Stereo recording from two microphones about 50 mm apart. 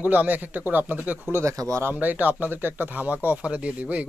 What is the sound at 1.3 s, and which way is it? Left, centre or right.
Speech, right.